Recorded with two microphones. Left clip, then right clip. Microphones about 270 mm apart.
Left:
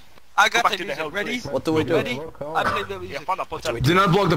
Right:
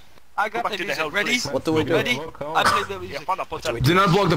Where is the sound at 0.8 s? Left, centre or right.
Centre.